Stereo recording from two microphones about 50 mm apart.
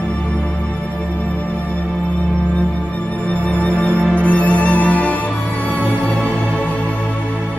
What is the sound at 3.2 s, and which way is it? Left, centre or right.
Music, left.